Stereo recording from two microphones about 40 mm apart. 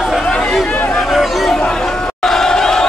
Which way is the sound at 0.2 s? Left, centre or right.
Left.